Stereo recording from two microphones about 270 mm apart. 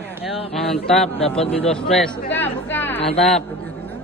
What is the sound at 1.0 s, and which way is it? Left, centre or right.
Speech, left.